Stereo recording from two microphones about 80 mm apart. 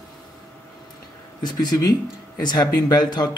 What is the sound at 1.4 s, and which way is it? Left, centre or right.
Speech, left.